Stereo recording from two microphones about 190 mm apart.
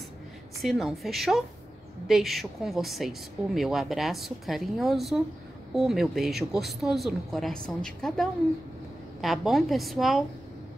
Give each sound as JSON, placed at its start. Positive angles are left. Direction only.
{"t": 0.6, "sound": "a woman's voice", "side_deg": 0}